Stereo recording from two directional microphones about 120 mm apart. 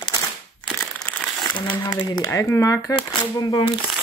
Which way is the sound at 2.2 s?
25° left (ahead or behind).